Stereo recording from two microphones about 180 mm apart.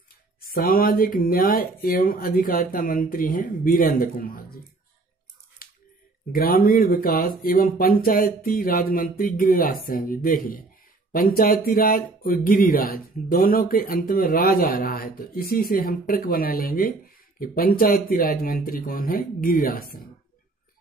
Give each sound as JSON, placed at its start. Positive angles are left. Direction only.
{"t": 0.4, "sound": "speech", "side_deg": 55}
{"t": 5.6, "sound": "scissors", "side_deg": 55}
{"t": 6.3, "sound": "speech", "side_deg": 55}